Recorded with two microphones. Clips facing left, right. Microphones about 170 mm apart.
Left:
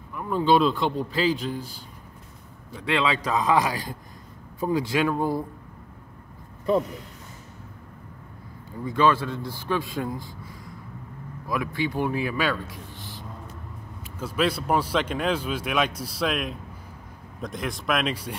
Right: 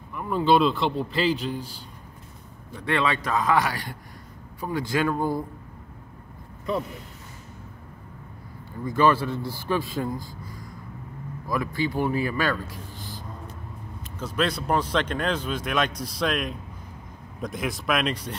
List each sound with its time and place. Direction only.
0.1 s speech: centre (ahead or behind)
3.3 s speech: 20° left (ahead or behind)
5.1 s speech: 5° left (ahead or behind)
8.8 s speech: 5° right (ahead or behind)
11.4 s speech: centre (ahead or behind)
14.1 s speech: 10° left (ahead or behind)